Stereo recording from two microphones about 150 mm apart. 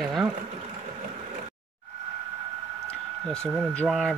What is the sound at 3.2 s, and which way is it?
Speech, 5° left (ahead or behind).